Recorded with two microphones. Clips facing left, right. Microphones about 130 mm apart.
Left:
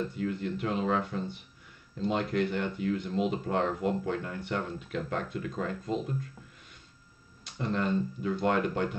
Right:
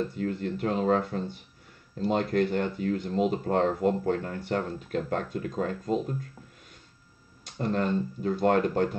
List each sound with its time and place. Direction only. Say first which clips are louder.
0.2 s speech: right 2 dB; 45° right (ahead or behind)
7.5 s speech: right 2 dB; 45° right (ahead or behind)